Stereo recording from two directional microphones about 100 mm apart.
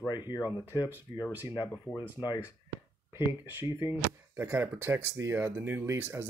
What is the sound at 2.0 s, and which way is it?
Speech, 45° left (ahead or behind).